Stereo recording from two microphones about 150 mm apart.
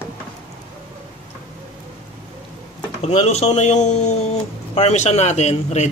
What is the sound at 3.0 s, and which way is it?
A man's voice, 45° left (ahead or behind).